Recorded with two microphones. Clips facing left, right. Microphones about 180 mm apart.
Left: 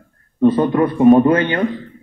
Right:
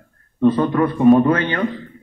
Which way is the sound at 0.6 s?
25° left (ahead or behind).